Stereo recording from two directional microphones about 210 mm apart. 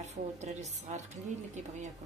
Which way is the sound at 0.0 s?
35° right (ahead or behind).